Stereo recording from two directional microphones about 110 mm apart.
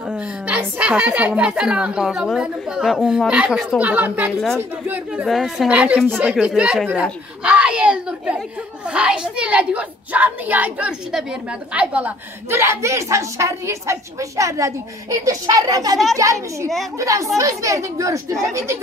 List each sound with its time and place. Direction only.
0.1 s a woman's voice: 10° right (ahead or behind)
4.3 s a woman's voice: centre (ahead or behind)
4.6 s a woman's voice: 15° right (ahead or behind)
5.2 s a woman's voice: centre (ahead or behind)
5.7 s a woman's voice: 10° right (ahead or behind)
12.4 s a woman's voice: 25° right (ahead or behind)